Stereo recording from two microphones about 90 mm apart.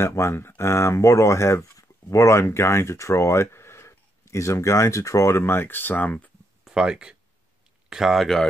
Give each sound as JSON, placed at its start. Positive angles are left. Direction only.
{"t": 0.0, "sound": "speech", "side_deg": 30}
{"t": 6.6, "sound": "speech", "side_deg": -5}